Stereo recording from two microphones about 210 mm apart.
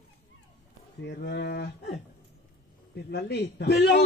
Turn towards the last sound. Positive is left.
turn(degrees=50)  # may be behind; listen again after turning